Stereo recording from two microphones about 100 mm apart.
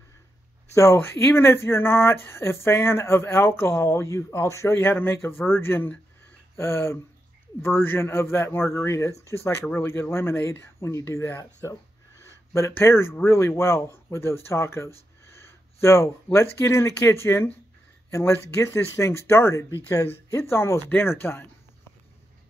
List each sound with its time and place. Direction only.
0.7 s speech: 25° left (ahead or behind)